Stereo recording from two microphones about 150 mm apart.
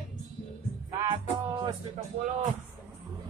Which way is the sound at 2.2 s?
60° right (ahead or behind).